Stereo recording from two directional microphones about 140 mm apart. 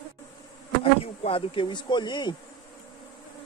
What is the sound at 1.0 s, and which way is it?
Speech, 40° left (ahead or behind).